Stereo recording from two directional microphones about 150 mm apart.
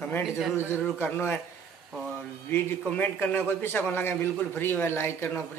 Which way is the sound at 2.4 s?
15° left (ahead or behind).